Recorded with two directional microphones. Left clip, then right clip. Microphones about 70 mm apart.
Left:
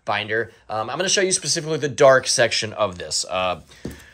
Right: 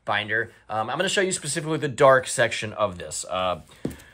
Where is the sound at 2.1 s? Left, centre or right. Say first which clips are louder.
Left 3 dB; centre.